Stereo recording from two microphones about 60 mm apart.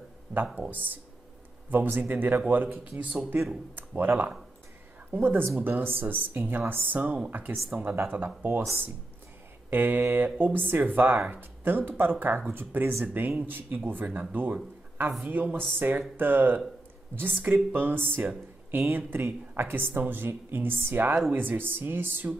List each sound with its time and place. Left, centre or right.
0.6 s speech: right
5.1 s speech: right
9.7 s speech: right